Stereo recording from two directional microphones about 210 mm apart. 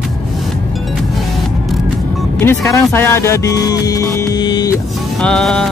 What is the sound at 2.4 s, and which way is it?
Speech, 10° left (ahead or behind).